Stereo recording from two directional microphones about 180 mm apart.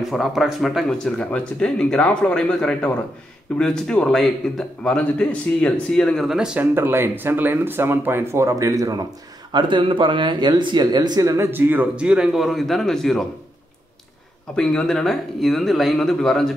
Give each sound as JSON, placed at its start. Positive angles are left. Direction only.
{"t": 0.0, "sound": "a man's voice", "side_deg": 0}
{"t": 14.5, "sound": "speech", "side_deg": 5}